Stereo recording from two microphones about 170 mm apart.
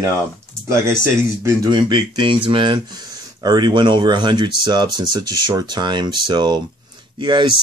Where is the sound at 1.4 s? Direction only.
25° right (ahead or behind).